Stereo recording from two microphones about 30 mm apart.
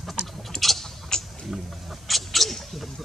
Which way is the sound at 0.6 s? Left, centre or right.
Centre.